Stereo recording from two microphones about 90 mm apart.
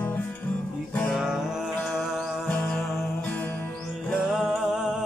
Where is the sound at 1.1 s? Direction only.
5° right (ahead or behind).